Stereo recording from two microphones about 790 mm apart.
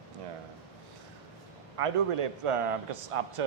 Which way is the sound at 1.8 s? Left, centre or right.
Right.